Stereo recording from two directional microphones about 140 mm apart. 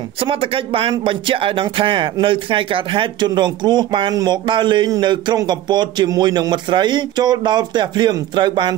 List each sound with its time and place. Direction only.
0.2 s speech: 40° right (ahead or behind)